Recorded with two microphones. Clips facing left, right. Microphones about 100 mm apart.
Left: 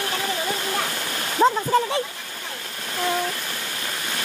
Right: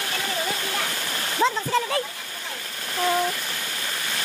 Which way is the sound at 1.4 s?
30° left (ahead or behind).